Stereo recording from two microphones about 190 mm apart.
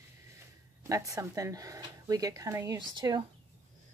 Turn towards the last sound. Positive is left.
turn(degrees=-20)  # may be behind; listen again after turning